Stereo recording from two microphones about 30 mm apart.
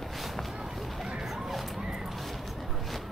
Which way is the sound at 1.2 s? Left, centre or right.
Centre.